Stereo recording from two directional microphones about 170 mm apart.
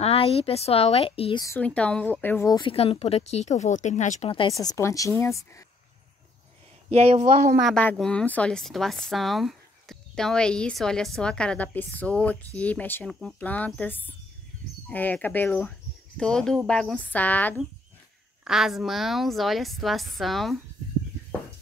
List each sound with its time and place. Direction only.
0.0 s speech: 35° left (ahead or behind)
1.4 s speech: 10° left (ahead or behind)
2.7 s speech: 35° left (ahead or behind)
4.3 s speech: 25° left (ahead or behind)
6.9 s speech: 40° right (ahead or behind)
7.5 s speech: centre (ahead or behind)
18.4 s speech: 5° right (ahead or behind)